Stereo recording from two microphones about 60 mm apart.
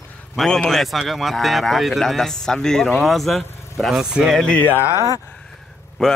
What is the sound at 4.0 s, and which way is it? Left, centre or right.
Speech, centre.